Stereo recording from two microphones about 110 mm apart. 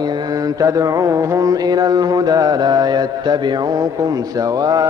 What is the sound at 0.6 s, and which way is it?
Mantra, 30° right (ahead or behind).